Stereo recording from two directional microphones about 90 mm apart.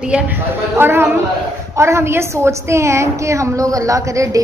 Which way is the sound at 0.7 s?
25° right (ahead or behind).